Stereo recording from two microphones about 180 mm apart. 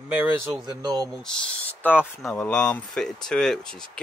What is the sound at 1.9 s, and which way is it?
Speech, 5° right (ahead or behind).